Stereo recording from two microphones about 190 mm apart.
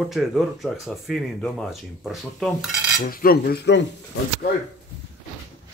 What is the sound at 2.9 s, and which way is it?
Cutlery, 50° left (ahead or behind).